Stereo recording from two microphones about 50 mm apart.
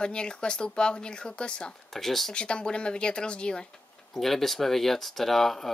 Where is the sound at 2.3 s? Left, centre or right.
Left.